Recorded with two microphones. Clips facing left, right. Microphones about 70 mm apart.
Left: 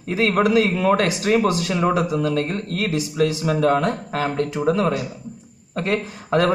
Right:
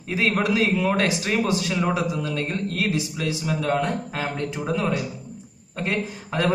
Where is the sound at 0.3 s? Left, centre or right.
Left.